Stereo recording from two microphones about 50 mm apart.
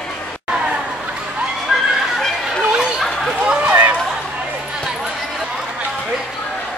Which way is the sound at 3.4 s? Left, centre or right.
Right.